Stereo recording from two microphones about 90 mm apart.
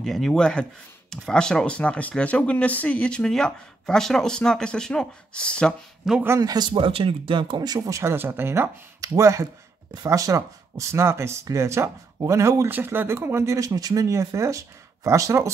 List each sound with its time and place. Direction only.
0.0 s speech: 5° left (ahead or behind)
6.0 s speech: 5° right (ahead or behind)
6.4 s speech: 50° right (ahead or behind)
6.7 s speech: 85° right; by 15.5 s 35° right (ahead or behind)